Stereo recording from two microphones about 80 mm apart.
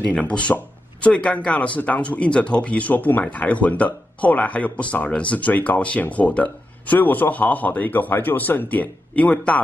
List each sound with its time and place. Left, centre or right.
0.1 s speech: centre